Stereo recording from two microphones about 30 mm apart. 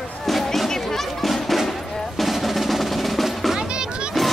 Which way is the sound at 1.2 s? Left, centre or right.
Centre.